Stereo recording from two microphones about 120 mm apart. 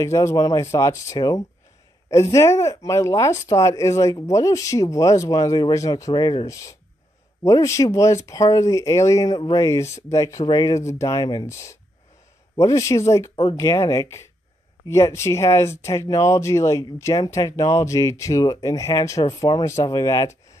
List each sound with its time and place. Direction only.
0.0 s speech: 25° left (ahead or behind)
13.4 s speech: 35° left (ahead or behind)
13.7 s speech: 25° left (ahead or behind)